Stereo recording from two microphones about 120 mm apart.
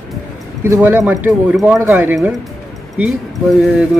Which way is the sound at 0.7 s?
20° right (ahead or behind).